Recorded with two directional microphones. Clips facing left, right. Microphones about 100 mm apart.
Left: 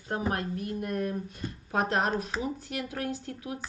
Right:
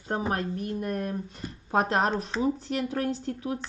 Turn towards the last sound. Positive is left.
turn(degrees=-35)  # may be behind; listen again after turning